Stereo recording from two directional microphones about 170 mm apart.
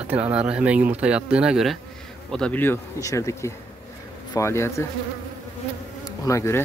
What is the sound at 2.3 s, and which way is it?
Speech, 5° left (ahead or behind).